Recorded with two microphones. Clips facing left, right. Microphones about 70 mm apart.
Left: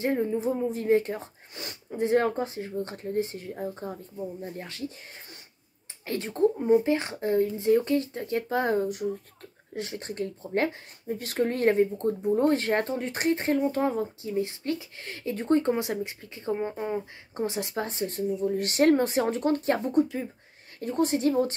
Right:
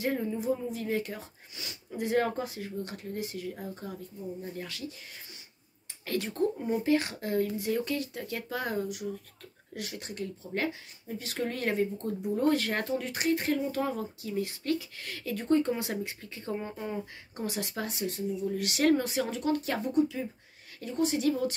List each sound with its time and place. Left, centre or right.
0.0 s speech: left
2.0 s speech: left
6.0 s speech: left
15.9 s speech: centre; by 21.5 s left